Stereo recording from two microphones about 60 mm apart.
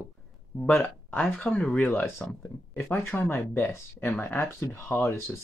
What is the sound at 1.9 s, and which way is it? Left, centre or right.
Speech, left.